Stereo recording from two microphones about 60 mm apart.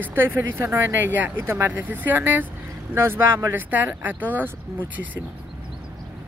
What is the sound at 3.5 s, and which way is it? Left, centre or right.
Speech, right.